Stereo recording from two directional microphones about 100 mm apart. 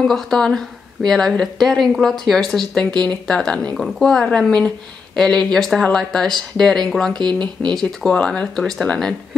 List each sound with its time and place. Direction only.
0.0 s speech: 5° left (ahead or behind)
7.2 s speech: 45° right (ahead or behind)
7.7 s speech: 5° left (ahead or behind)